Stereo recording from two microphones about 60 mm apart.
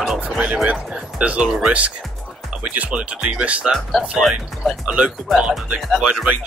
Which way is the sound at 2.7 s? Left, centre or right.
Right.